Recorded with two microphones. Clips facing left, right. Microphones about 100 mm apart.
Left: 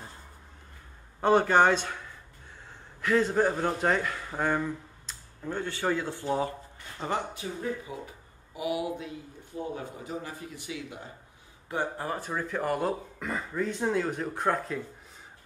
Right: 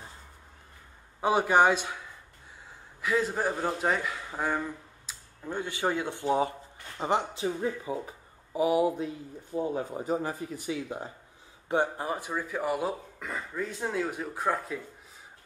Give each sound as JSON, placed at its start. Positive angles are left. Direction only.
{"t": 1.2, "sound": "a man's voice", "side_deg": -10}
{"t": 5.6, "sound": "speech", "side_deg": -15}
{"t": 8.5, "sound": "speech", "side_deg": -35}
{"t": 11.7, "sound": "speech", "side_deg": -20}